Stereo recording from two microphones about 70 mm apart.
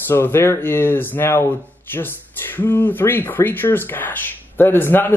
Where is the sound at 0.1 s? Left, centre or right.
Left.